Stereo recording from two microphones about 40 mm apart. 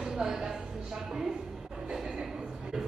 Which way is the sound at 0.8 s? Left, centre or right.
Centre.